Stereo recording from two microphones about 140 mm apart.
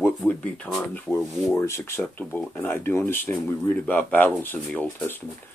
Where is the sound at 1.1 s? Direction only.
20° left (ahead or behind).